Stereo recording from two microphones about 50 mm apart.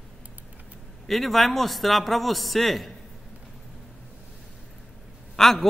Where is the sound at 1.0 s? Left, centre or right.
Centre.